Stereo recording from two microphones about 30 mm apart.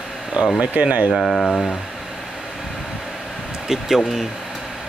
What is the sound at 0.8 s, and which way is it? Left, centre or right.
Speech, right.